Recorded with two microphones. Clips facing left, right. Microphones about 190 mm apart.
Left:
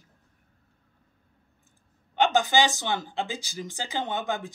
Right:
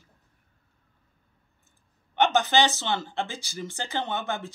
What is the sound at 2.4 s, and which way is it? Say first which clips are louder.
Speech: even; 15° left (ahead or behind).